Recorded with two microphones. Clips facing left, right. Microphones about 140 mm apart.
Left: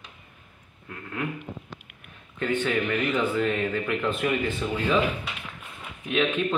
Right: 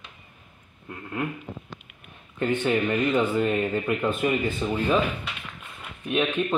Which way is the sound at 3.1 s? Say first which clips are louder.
Right 2 dB; 20° right (ahead or behind).